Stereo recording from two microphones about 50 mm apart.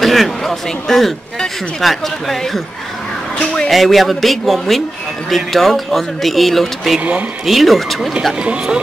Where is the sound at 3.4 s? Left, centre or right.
Centre.